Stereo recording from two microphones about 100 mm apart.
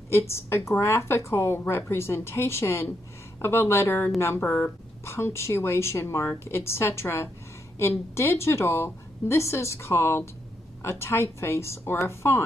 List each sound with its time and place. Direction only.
0.3 s a woman's voice: 25° left (ahead or behind)